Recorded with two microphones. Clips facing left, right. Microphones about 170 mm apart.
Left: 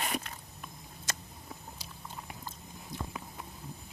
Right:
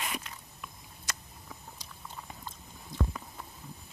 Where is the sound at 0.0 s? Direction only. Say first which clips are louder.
Left 3 dB; 40° left (ahead or behind).